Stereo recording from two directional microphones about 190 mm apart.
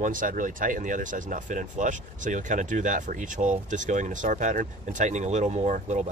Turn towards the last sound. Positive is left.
turn(degrees=-40)  # may be behind; listen again after turning